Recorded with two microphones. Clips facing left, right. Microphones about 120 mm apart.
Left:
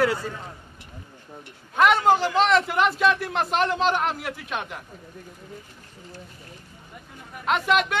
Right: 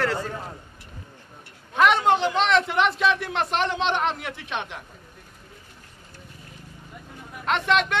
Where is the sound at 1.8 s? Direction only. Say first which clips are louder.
Left 1 dB; centre (ahead or behind).